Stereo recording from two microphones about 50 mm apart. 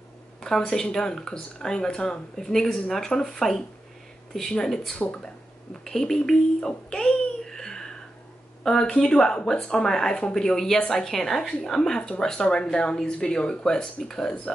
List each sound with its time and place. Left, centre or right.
0.4 s speech: centre
6.6 s music: centre
8.6 s speech: centre